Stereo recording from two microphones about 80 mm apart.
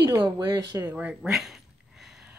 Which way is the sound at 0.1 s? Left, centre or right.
Right.